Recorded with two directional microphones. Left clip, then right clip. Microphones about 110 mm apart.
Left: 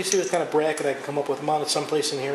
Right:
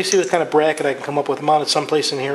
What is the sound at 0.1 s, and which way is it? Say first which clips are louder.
A man's voice: right 6 dB; 25° right (ahead or behind).